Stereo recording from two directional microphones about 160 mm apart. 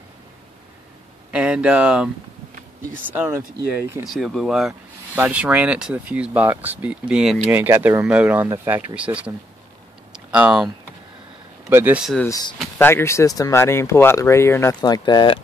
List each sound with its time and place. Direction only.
1.3 s speech: 5° right (ahead or behind)
3.2 s speech: 15° right (ahead or behind)
4.0 s speech: centre (ahead or behind)
11.7 s speech: 15° right (ahead or behind)
12.3 s speech: 25° left (ahead or behind)
14.8 s speech: 25° left (ahead or behind)